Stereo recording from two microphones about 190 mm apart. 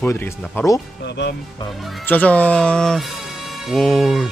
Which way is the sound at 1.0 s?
65° left (ahead or behind).